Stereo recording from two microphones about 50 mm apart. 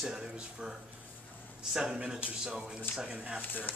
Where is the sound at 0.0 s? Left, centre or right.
Centre.